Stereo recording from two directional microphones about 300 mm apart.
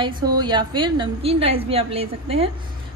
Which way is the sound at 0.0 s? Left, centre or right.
Centre.